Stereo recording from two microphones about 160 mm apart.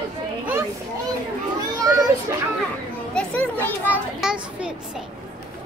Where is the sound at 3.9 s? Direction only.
5° right (ahead or behind).